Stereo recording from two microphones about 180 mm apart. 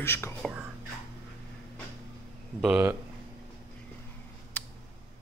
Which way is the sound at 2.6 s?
5° right (ahead or behind).